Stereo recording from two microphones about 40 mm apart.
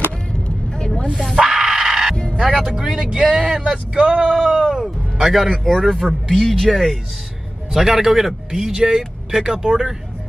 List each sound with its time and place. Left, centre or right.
0.7 s snake: left
1.5 s a sound: centre
2.4 s music: centre
3.0 s speech: centre
4.4 s speech: centre
5.6 s speech: centre
7.7 s speech: centre